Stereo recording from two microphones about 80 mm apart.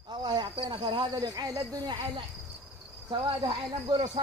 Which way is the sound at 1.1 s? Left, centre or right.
Right.